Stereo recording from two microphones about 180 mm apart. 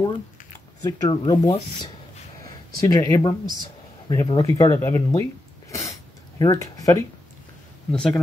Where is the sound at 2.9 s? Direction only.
20° left (ahead or behind).